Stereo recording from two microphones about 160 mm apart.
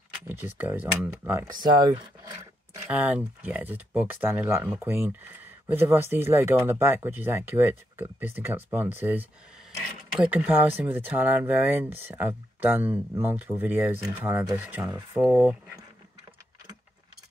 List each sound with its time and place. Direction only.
0.6 s speech: 10° right (ahead or behind)
1.5 s speech: 25° right (ahead or behind)
2.9 s speech: 10° right (ahead or behind)
10.2 s speech: 10° right (ahead or behind)